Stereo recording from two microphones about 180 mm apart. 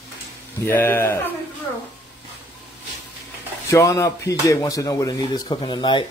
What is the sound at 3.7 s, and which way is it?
Speech, 15° left (ahead or behind).